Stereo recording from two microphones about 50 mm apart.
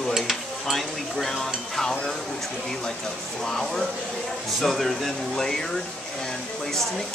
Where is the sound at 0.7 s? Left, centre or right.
Centre.